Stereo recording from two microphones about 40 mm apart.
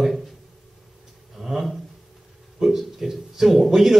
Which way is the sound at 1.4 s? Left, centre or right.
Centre.